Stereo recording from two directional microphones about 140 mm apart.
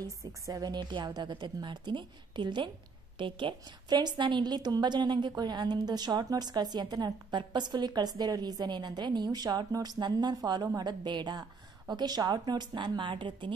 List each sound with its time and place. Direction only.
0.0 s a woman's voice: 25° right (ahead or behind)